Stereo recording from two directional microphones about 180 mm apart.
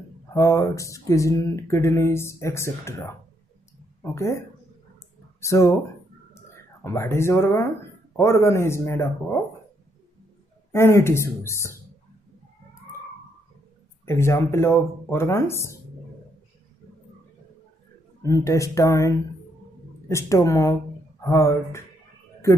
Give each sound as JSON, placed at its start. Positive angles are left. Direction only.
{"t": 0.3, "sound": "speech", "side_deg": 15}
{"t": 5.4, "sound": "speech", "side_deg": 15}
{"t": 6.3, "sound": "a sound", "side_deg": 15}
{"t": 8.2, "sound": "speech", "side_deg": 15}
{"t": 10.7, "sound": "speech", "side_deg": 15}
{"t": 14.0, "sound": "speech", "side_deg": 15}
{"t": 18.2, "sound": "speech", "side_deg": 15}